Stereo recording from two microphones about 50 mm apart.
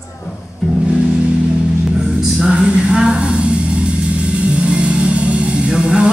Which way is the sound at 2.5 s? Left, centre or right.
Centre.